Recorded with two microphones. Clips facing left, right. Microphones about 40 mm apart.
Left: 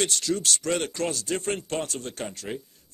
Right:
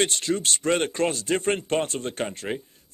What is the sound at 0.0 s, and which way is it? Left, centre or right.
Speech, right.